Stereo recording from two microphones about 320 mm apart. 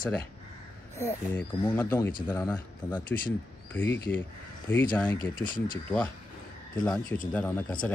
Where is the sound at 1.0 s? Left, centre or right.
Centre.